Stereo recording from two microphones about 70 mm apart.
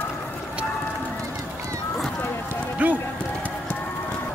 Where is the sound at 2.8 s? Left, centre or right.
Right.